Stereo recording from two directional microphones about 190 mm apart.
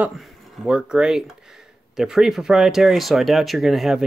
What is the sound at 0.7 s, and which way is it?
Speech, 5° right (ahead or behind).